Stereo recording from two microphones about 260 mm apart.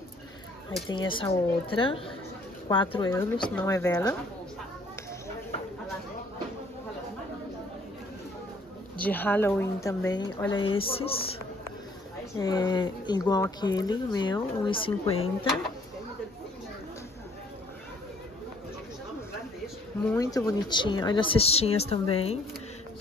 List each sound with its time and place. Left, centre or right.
0.8 s a woman's voice: centre
8.9 s speech: centre; by 11.2 s left
12.4 s speech: centre
20.1 s a woman's voice: centre